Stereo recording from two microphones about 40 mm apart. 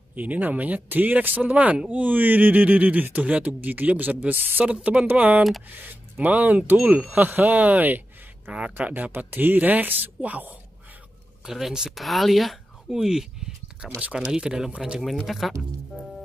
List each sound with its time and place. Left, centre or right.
0.1 s speech: right
5.0 s speech: right
8.5 s speech: right
8.7 s speech: right
9.3 s speech: right
11.4 s speech: centre
12.9 s speech: centre
15.2 s speech: centre